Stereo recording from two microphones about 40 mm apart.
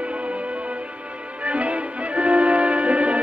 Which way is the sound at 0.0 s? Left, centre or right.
Right.